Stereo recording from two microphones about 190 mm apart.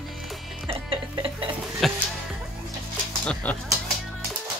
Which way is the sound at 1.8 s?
Centre (ahead or behind).